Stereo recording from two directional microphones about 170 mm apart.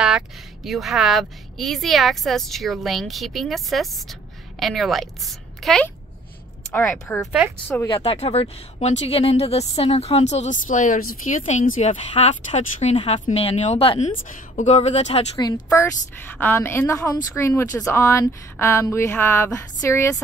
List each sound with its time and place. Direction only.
0.7 s a woman's voice: centre (ahead or behind)
8.0 s speech: 35° left (ahead or behind)
15.3 s a woman's voice: 20° left (ahead or behind)